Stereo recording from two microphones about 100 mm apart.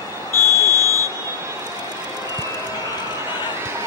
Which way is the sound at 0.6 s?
35° right (ahead or behind).